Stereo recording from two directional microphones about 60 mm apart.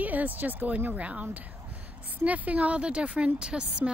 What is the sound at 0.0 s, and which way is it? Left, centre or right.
A woman's voice, right.